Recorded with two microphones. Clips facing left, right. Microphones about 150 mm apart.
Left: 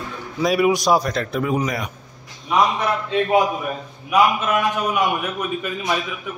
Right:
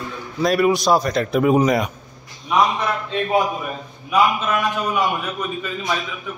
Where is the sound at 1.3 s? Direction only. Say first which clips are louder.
Right 8 dB; 20° right (ahead or behind).